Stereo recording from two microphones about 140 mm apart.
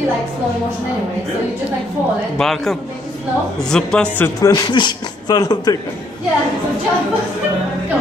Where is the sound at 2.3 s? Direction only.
Centre (ahead or behind).